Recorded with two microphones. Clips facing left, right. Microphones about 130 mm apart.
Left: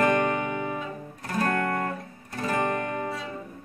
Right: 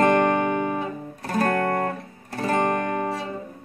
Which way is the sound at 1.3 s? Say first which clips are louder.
Right 4 dB; 35° right (ahead or behind).